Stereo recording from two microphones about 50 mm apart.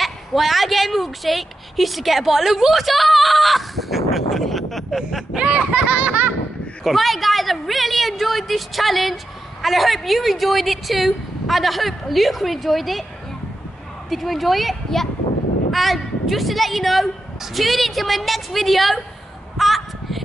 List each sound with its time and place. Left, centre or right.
0.0 s a woman's voice: centre
5.3 s speech: right
6.8 s a woman's voice: centre
14.0 s a woman's voice: centre
19.5 s a sound: centre